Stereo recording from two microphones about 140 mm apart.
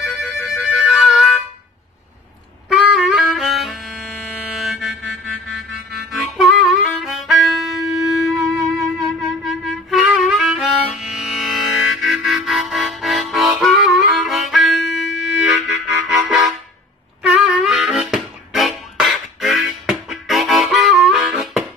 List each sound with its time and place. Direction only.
0.0 s music: centre (ahead or behind)
2.7 s music: centre (ahead or behind)
17.3 s harmonica: 5° right (ahead or behind)